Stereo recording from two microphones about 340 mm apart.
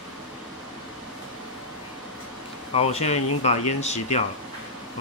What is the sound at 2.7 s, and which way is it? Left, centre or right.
Speech, centre.